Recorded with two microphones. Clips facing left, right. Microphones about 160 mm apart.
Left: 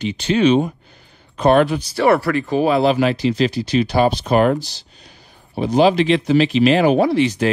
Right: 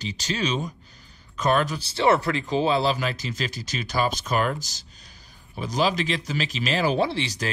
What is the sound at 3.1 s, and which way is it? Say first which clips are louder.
Speech: left 13 dB; 45° right (ahead or behind).